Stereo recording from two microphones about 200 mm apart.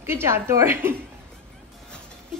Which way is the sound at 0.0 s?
10° right (ahead or behind).